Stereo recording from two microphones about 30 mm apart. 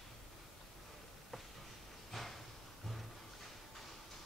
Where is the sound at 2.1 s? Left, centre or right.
Centre.